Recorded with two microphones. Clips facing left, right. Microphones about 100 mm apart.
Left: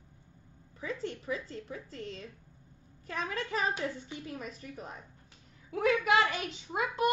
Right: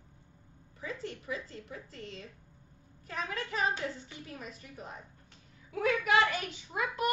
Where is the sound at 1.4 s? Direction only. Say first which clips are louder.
Left 3 dB; 35° left (ahead or behind).